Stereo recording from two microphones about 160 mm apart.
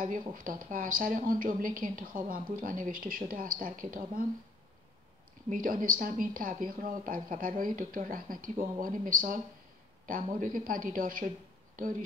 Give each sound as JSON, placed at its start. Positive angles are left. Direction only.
{"t": 0.3, "sound": "a woman's voice", "side_deg": -60}
{"t": 5.5, "sound": "a woman's voice", "side_deg": -60}